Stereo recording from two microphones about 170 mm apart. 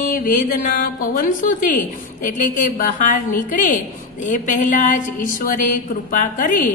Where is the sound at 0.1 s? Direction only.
50° left (ahead or behind).